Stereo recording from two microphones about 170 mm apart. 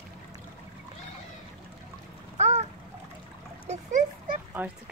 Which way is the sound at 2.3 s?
40° right (ahead or behind).